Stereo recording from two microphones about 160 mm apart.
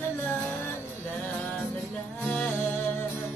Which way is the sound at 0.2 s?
10° left (ahead or behind).